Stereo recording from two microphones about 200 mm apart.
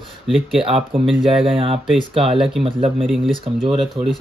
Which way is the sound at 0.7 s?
30° right (ahead or behind).